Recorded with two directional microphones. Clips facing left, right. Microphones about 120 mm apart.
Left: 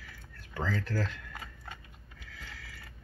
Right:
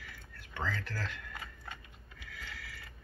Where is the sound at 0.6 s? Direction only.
35° left (ahead or behind).